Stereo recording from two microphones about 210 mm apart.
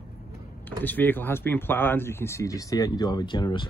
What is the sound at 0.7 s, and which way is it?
Speech, 10° left (ahead or behind).